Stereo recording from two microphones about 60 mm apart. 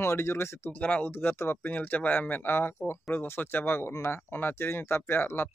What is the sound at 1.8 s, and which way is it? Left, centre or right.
Speech, left.